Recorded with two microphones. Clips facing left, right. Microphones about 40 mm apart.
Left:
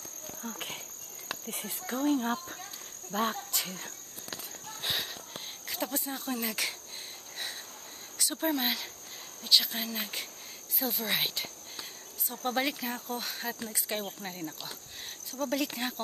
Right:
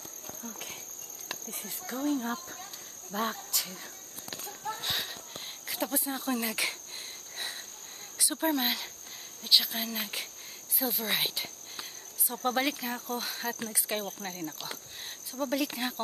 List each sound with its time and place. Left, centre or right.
0.4 s speech: left
1.9 s cricket: centre
3.1 s speech: centre
5.7 s speech: centre
8.2 s cricket: centre
10.8 s speech: centre
12.4 s cricket: centre
15.5 s cricket: centre